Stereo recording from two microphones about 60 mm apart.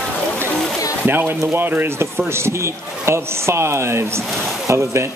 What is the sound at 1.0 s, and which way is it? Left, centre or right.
Speech, right.